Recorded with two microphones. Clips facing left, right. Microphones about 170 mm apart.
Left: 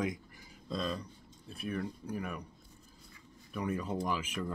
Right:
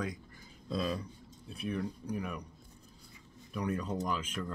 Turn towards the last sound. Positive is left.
turn(degrees=10)  # may be behind; listen again after turning